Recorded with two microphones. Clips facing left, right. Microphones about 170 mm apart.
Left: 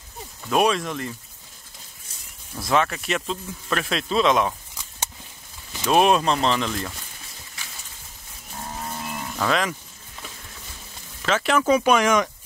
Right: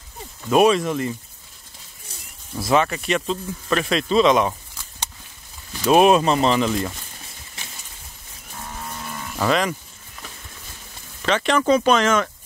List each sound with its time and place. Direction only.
0.5 s speech: centre (ahead or behind)
2.5 s speech: 5° right (ahead or behind)
5.9 s speech: 5° right (ahead or behind)
9.4 s speech: centre (ahead or behind)
11.2 s speech: 5° left (ahead or behind)